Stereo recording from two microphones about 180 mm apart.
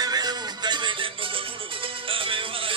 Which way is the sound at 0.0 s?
20° right (ahead or behind).